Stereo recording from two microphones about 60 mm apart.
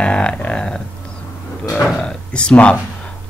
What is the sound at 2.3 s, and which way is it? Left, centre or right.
Speech, centre.